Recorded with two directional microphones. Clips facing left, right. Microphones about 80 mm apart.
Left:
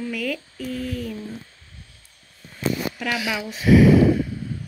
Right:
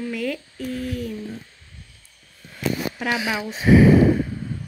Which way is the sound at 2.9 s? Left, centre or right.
Right.